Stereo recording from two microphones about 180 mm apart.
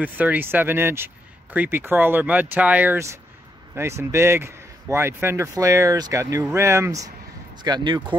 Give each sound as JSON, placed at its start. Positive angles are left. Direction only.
{"t": 0.0, "sound": "speech", "side_deg": -10}